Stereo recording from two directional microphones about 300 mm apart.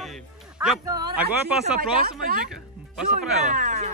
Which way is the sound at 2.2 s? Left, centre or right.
Right.